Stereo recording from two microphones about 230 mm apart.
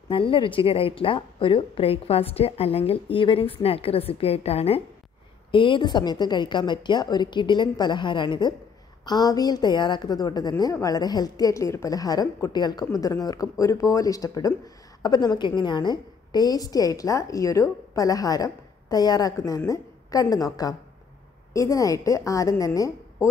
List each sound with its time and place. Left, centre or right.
0.1 s a woman's voice: left